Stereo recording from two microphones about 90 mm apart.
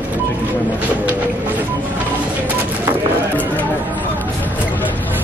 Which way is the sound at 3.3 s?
20° left (ahead or behind).